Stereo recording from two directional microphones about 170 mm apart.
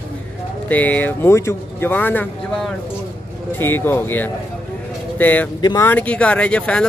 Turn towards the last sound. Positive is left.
turn(degrees=5)  # may be behind; listen again after turning